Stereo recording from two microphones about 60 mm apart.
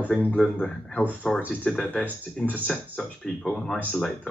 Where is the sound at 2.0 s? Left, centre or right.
Left.